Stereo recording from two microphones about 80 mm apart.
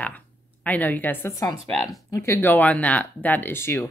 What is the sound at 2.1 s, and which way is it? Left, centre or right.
Speech, left.